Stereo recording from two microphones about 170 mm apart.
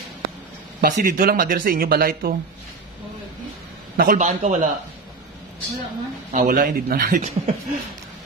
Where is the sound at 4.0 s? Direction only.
55° right (ahead or behind).